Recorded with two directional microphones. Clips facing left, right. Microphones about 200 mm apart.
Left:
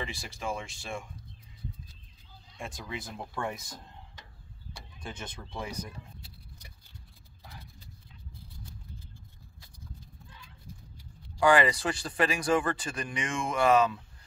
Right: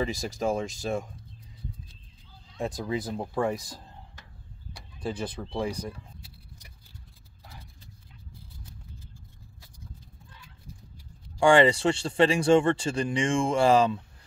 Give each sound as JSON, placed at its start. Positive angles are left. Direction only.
{"t": 0.0, "sound": "speech", "side_deg": -40}
{"t": 2.5, "sound": "speech", "side_deg": -35}
{"t": 5.0, "sound": "speech", "side_deg": -35}
{"t": 11.3, "sound": "speech", "side_deg": -25}